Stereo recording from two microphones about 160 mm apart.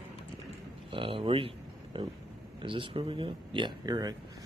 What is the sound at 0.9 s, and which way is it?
Speech, 35° right (ahead or behind).